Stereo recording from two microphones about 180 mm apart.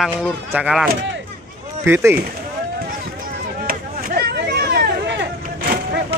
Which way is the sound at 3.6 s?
55° right (ahead or behind).